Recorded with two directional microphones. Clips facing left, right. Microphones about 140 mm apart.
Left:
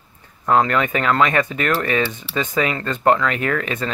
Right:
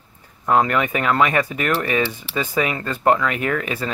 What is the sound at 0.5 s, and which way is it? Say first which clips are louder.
Speech: left 1 dB; 10° right (ahead or behind).